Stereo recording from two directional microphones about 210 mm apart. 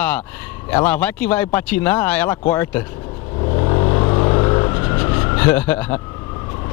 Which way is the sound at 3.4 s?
25° left (ahead or behind).